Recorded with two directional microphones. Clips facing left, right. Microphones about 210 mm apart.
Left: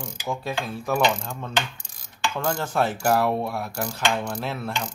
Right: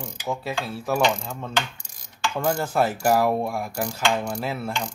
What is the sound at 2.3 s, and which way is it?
Speech, 10° right (ahead or behind).